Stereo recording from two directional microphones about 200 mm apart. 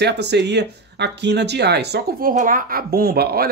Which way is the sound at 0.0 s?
60° right (ahead or behind).